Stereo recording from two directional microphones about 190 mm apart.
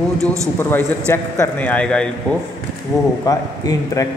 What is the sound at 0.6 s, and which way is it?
A man's voice, 10° left (ahead or behind).